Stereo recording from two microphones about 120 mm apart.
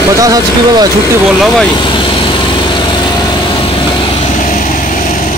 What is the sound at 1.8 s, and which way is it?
Lawn mower, 45° left (ahead or behind).